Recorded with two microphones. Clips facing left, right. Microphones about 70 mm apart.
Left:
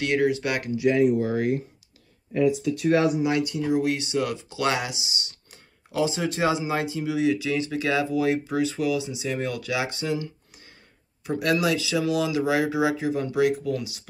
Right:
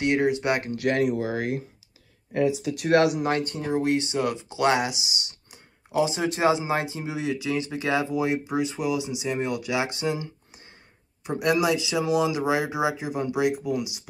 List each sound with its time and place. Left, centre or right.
0.0 s speech: right
0.7 s speech: right
3.3 s speech: right; by 14.0 s centre